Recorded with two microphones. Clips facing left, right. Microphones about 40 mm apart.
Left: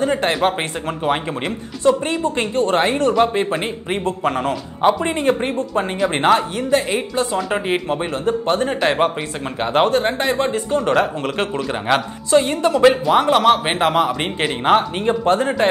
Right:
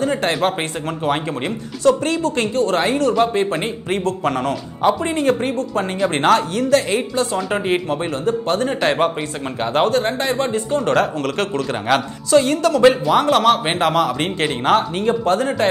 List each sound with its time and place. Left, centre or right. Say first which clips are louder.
0.0 s speech: left 1 dB; left
1.9 s speech: right 1 dB; left
7.3 s speech: right 1 dB; centre
8.3 s speech: left 1 dB; left
8.6 s speech: right 1 dB; centre
9.6 s speech: left 1 dB; left
11.9 s speech: even; centre
12.3 s speech: right 1 dB; left